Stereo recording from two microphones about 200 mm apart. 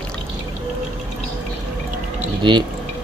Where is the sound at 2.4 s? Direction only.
25° right (ahead or behind).